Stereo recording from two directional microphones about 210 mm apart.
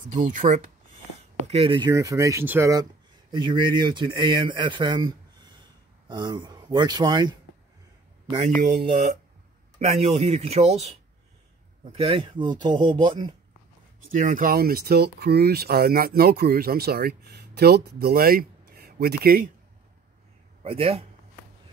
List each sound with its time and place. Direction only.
0.1 s speech: 40° right (ahead or behind)
1.5 s speech: 25° right (ahead or behind)
8.5 s speech: 40° right (ahead or behind); by 13.3 s 20° right (ahead or behind)
14.1 s speech: 40° right (ahead or behind)
20.6 s speech: 25° right (ahead or behind)